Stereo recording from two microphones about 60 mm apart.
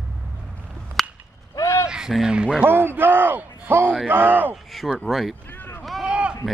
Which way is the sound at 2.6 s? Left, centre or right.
Right.